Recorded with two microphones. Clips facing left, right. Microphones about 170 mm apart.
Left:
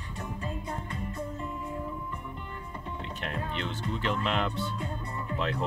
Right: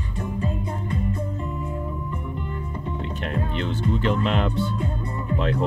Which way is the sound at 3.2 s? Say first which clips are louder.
Right 7 dB; 35° right (ahead or behind).